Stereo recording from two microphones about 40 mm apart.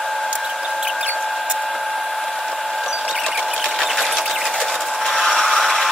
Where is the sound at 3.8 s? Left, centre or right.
Centre.